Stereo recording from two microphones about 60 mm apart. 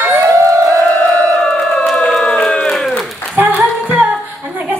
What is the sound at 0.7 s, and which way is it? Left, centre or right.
Crowd, left.